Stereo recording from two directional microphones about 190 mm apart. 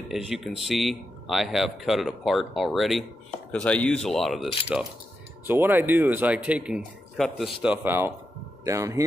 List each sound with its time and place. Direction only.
0.1 s speech: centre (ahead or behind)